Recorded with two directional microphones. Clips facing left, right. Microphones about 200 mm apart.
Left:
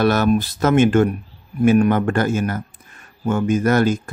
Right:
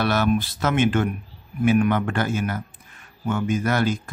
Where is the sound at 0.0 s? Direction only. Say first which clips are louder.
Left 5 dB; 45° left (ahead or behind).